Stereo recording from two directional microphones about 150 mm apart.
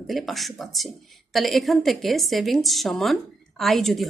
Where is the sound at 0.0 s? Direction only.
Centre (ahead or behind).